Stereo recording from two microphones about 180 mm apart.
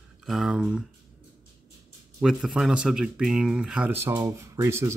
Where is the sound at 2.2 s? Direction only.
Centre (ahead or behind).